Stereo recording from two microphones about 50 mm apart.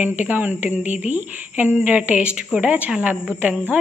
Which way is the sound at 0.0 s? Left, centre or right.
Right.